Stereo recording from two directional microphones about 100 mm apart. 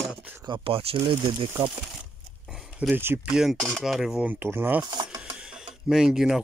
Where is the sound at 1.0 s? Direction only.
55° right (ahead or behind).